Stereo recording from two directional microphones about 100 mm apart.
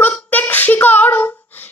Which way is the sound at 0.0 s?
15° left (ahead or behind).